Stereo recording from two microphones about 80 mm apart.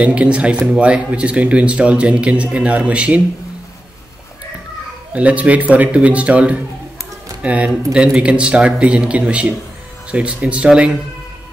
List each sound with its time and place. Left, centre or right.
0.0 s speech: centre
5.1 s speech: centre